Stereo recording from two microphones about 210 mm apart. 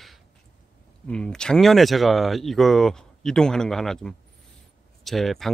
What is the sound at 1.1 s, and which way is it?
Speech, 5° left (ahead or behind).